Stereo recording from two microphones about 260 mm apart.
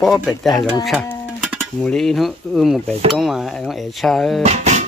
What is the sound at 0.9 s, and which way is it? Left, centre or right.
Music, centre.